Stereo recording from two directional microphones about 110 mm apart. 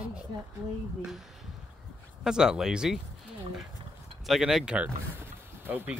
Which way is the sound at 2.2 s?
5° right (ahead or behind).